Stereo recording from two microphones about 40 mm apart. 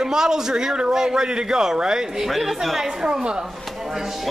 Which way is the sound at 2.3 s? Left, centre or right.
Centre.